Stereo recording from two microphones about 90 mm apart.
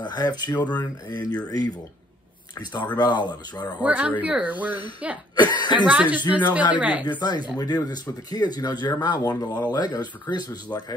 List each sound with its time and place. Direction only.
0.0 s speech: 50° left (ahead or behind)
2.6 s speech: 55° left (ahead or behind)
3.8 s speech: 15° right (ahead or behind)
5.3 s speech: 55° left (ahead or behind)
5.9 s speech: 15° right (ahead or behind)
7.2 s speech: 50° left (ahead or behind)